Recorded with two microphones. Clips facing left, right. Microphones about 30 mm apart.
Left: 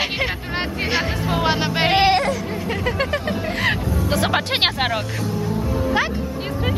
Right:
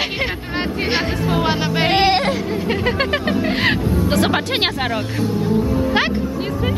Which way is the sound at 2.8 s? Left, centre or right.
Right.